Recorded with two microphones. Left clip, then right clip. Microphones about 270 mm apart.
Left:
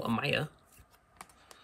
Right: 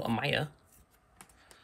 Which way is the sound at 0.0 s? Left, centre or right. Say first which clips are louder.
Even; centre.